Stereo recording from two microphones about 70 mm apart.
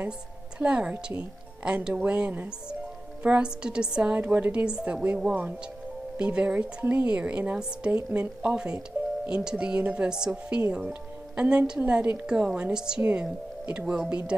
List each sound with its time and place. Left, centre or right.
0.6 s speech: centre
9.0 s music: right
9.3 s a woman's voice: centre